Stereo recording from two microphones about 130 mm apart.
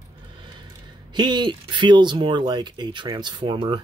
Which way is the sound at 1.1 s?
35° right (ahead or behind).